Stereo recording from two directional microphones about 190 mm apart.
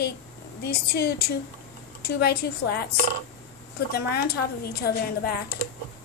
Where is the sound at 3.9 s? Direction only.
55° left (ahead or behind).